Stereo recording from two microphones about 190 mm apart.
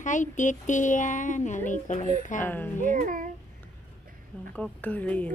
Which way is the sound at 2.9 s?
45° right (ahead or behind).